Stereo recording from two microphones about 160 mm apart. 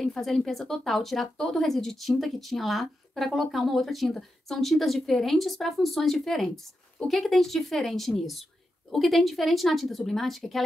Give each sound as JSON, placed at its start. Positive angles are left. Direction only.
{"t": 0.0, "sound": "speech", "side_deg": 0}